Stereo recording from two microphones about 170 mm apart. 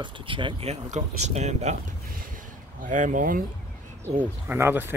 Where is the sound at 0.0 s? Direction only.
30° right (ahead or behind).